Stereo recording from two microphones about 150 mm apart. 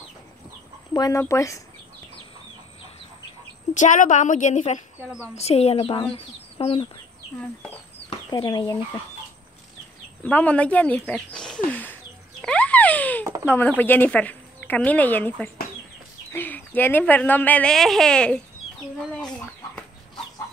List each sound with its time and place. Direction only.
0.9 s speech: 20° left (ahead or behind)
3.7 s a woman's voice: 55° left (ahead or behind)
5.0 s a woman's voice: 10° right (ahead or behind)
5.4 s a woman's voice: 45° left (ahead or behind)
8.3 s speech: 25° left (ahead or behind)
10.2 s a sound: 10° left (ahead or behind)
13.7 s speech: 10° left (ahead or behind)
19.2 s chicken: 5° left (ahead or behind)